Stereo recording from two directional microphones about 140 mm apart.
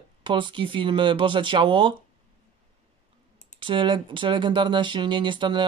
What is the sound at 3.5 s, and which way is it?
Speech, 35° right (ahead or behind).